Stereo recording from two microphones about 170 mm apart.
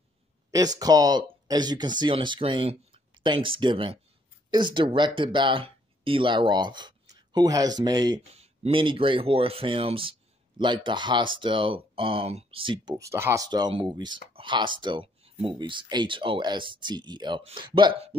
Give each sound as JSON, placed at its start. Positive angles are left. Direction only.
{"t": 0.5, "sound": "speech", "side_deg": -20}
{"t": 8.3, "sound": "speech", "side_deg": -35}